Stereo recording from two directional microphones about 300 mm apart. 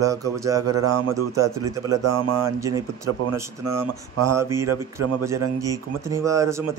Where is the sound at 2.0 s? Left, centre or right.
Right.